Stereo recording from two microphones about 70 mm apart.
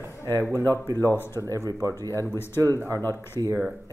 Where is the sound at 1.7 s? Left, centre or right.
Right.